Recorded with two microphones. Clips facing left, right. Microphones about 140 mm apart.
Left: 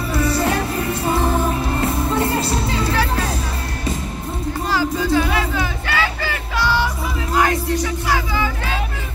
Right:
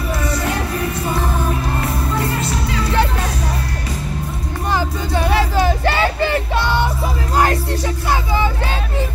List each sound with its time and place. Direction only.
4.7 s music: 30° right (ahead or behind)